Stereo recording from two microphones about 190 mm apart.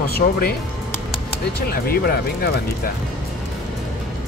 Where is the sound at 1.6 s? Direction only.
50° left (ahead or behind).